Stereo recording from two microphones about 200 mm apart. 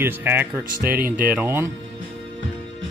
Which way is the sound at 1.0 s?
10° right (ahead or behind).